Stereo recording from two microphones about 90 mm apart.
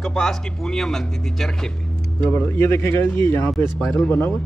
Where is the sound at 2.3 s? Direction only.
25° left (ahead or behind).